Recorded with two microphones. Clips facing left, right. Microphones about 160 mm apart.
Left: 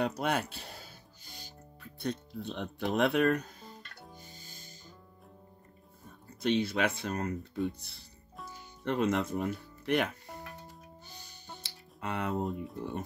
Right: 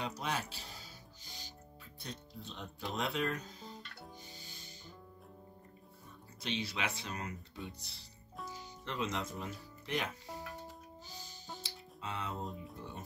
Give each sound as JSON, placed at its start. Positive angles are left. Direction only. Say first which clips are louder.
{"t": 0.0, "sound": "music", "louder": "left 8 dB", "side_deg": 60}
{"t": 6.0, "sound": "speech", "louder": "left 11 dB", "side_deg": 50}
{"t": 11.6, "sound": "music", "louder": "left 9 dB", "side_deg": 65}
{"t": 12.7, "sound": "speech", "louder": "left 10 dB", "side_deg": 60}